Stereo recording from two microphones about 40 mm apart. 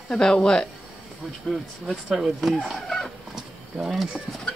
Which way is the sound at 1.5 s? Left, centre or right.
Centre.